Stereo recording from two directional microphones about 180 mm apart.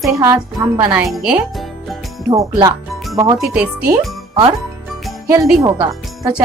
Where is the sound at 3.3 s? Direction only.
5° right (ahead or behind).